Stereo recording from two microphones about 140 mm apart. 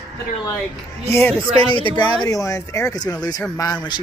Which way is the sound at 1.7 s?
35° left (ahead or behind).